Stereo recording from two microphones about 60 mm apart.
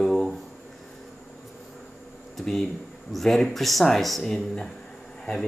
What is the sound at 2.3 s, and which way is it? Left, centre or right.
A man's voice, centre.